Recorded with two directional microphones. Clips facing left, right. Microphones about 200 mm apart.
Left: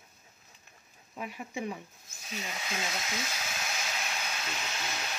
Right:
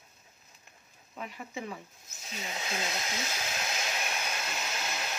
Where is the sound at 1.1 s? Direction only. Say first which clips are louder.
Left 2 dB; 10° left (ahead or behind).